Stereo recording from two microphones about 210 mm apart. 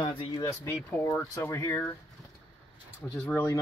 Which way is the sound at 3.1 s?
5° left (ahead or behind).